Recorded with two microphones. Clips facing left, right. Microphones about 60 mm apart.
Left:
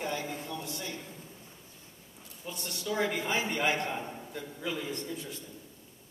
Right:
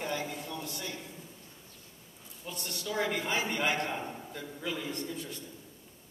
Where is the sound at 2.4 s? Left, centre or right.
Centre.